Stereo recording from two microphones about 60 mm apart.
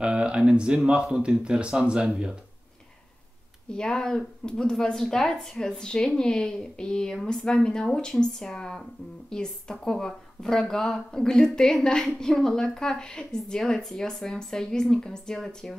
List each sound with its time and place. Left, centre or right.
0.0 s speech: centre
3.6 s speech: centre